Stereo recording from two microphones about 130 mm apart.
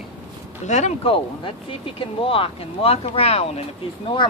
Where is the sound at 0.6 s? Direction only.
65° left (ahead or behind).